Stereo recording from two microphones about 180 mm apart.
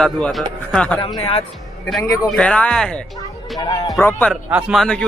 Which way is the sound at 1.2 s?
35° left (ahead or behind).